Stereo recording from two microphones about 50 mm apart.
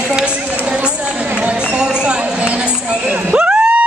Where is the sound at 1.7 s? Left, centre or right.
Centre.